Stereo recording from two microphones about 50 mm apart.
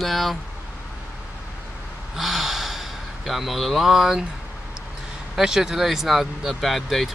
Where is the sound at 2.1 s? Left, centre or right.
Centre.